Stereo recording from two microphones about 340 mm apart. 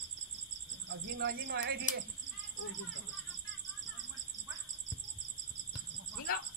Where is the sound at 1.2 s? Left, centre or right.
Right.